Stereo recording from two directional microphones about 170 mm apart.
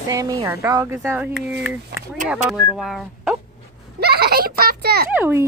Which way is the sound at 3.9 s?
70° right (ahead or behind).